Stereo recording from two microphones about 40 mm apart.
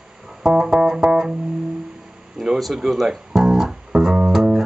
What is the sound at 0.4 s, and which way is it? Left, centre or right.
Music, centre.